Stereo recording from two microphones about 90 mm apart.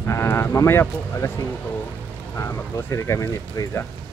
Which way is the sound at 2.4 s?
35° left (ahead or behind).